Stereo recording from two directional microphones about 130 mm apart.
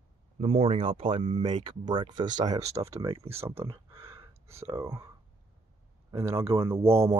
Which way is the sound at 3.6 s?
45° right (ahead or behind).